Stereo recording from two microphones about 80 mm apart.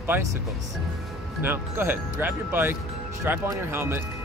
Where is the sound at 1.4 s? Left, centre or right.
Right.